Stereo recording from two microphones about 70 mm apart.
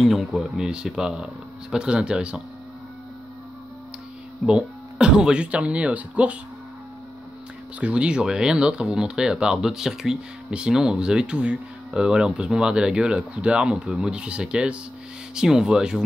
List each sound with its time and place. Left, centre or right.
0.0 s speech: centre
4.5 s speech: centre
7.8 s speech: centre
13.8 s speech: centre
14.1 s speech: centre